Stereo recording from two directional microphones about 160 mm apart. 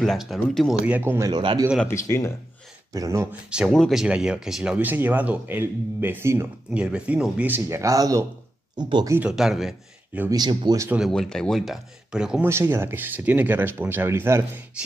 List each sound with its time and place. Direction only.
0.0 s speech: centre (ahead or behind); by 1.3 s 15° right (ahead or behind)
1.3 s a man's voice: 30° right (ahead or behind)
1.8 s speech: 15° left (ahead or behind)
2.9 s speech: 20° right (ahead or behind)
3.4 s speech: 5° right (ahead or behind); by 9.1 s 30° right (ahead or behind)
9.1 s speech: 5° right (ahead or behind)
10.3 s speech: 25° right (ahead or behind)
11.1 s speech: 5° left (ahead or behind)
12.4 s speech: 15° right (ahead or behind)